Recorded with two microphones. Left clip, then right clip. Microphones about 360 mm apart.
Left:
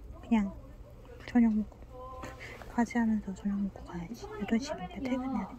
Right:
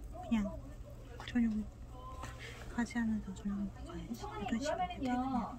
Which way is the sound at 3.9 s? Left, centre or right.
Centre.